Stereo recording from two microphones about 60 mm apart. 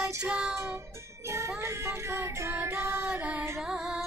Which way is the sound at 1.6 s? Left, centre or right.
Right.